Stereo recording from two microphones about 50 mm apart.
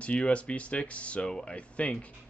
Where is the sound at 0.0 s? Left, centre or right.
Left.